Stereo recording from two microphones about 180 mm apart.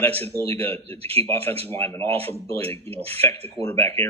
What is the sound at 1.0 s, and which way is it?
Speech, 35° right (ahead or behind).